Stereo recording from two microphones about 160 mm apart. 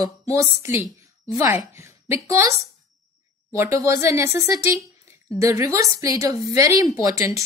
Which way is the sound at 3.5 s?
20° right (ahead or behind).